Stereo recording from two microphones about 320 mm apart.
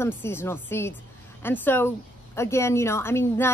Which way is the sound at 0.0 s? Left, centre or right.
Centre.